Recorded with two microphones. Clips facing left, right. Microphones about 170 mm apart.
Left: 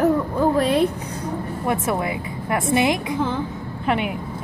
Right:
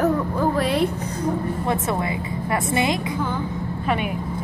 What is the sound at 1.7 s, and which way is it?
A woman's voice, 15° left (ahead or behind).